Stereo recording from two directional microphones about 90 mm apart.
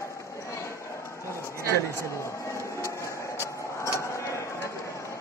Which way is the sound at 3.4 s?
30° left (ahead or behind).